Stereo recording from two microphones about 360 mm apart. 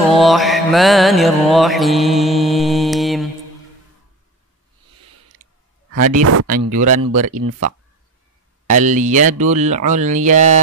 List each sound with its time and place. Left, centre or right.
0.1 s music: centre
6.1 s speech: right
6.7 s speech: right
8.7 s speech: right